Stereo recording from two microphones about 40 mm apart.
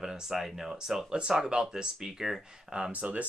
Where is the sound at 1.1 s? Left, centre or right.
Right.